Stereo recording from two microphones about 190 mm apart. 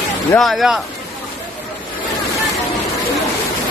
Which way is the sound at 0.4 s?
Centre (ahead or behind).